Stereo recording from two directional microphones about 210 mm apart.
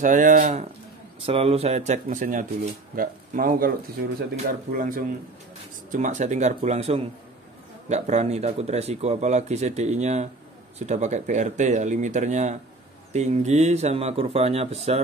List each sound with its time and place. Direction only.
0.0 s speech: 35° right (ahead or behind)